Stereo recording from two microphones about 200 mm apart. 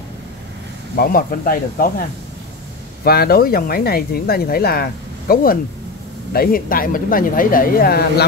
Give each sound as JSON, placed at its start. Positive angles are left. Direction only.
{"t": 0.9, "sound": "speech", "side_deg": 45}